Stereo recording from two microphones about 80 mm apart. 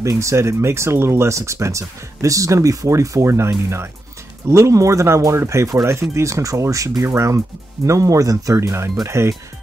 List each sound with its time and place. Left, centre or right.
0.0 s speech: right